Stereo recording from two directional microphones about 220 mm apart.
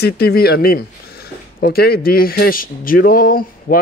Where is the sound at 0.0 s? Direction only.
45° left (ahead or behind).